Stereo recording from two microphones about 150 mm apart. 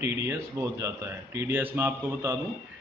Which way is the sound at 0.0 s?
20° right (ahead or behind).